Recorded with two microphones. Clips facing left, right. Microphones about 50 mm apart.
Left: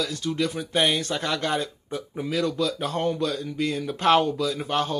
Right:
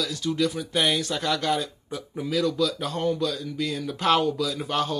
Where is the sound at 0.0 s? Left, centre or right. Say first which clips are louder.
Right 1 dB; centre.